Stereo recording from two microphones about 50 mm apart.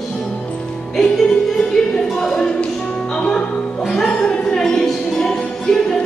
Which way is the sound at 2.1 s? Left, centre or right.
Centre.